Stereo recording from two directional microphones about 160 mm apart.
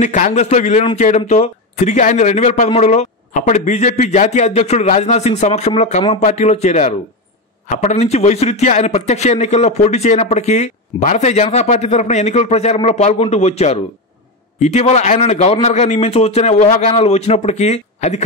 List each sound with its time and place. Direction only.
0.0 s a man's voice: 50° left (ahead or behind)